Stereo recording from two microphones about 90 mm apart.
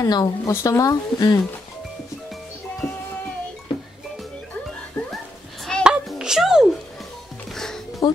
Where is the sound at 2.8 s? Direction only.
40° left (ahead or behind).